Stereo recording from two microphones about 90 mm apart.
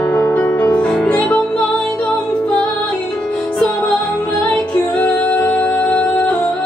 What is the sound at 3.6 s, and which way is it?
Music, 15° left (ahead or behind).